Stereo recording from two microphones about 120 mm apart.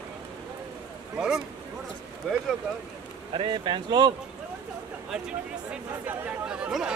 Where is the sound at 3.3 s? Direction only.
45° right (ahead or behind).